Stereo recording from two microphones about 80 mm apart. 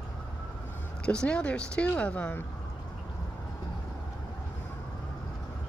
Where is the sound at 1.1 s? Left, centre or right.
Centre.